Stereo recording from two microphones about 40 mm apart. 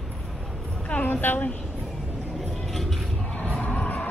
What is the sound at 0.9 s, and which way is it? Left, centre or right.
Speech, left.